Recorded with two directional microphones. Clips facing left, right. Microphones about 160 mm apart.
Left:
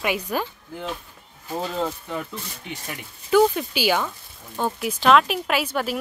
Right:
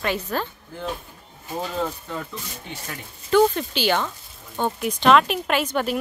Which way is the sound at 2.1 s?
15° left (ahead or behind).